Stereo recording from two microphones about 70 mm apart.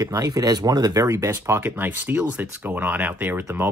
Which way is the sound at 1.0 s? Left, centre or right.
Right.